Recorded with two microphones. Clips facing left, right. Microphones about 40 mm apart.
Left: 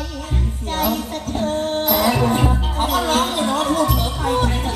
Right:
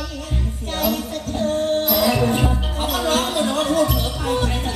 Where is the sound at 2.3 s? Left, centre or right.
Left.